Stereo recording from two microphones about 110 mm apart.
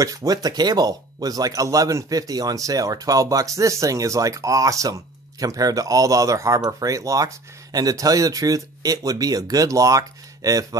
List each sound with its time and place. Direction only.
0.0 s speech: 30° right (ahead or behind)